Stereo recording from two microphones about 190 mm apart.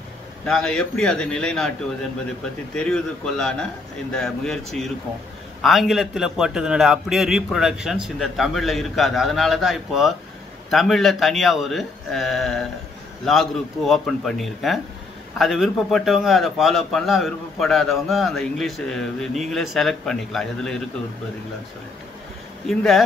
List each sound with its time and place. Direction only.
0.5 s a man's voice: 5° left (ahead or behind)
2.7 s a man's voice: 5° left (ahead or behind)
22.7 s a man's voice: centre (ahead or behind)